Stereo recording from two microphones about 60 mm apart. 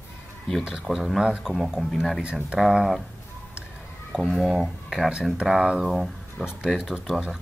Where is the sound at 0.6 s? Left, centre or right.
Centre.